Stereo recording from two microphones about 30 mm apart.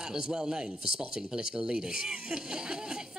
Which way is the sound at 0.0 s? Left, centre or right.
Right.